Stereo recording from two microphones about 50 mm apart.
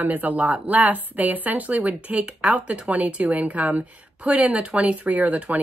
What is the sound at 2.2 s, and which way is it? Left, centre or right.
A woman's voice, centre.